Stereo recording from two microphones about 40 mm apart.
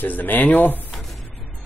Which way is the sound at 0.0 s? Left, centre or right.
Left.